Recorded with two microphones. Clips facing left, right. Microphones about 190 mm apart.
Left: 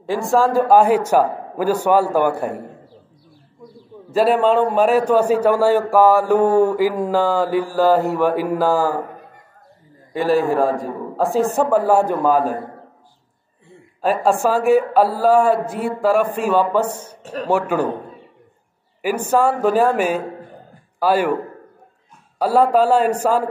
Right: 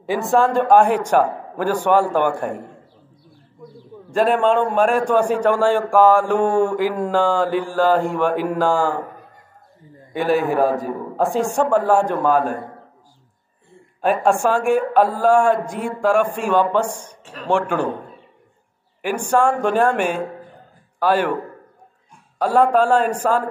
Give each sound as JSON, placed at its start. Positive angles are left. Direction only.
{"t": 0.0, "sound": "a man's voice", "side_deg": 0}
{"t": 4.1, "sound": "a man's voice", "side_deg": 5}
{"t": 10.1, "sound": "a man's voice", "side_deg": 0}
{"t": 14.2, "sound": "a man's voice", "side_deg": 0}
{"t": 17.2, "sound": "speech", "side_deg": 40}
{"t": 17.5, "sound": "a man's voice", "side_deg": 5}
{"t": 19.3, "sound": "a man's voice", "side_deg": 5}
{"t": 22.4, "sound": "a man's voice", "side_deg": 10}